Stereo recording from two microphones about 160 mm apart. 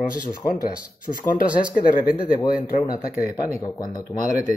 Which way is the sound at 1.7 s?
60° left (ahead or behind).